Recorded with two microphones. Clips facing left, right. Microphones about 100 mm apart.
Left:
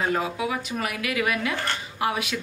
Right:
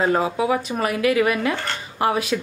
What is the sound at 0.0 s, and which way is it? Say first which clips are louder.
A woman's voice: right 6 dB; 30° right (ahead or behind).